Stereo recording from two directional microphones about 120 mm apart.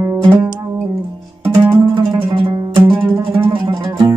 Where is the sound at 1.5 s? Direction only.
40° right (ahead or behind).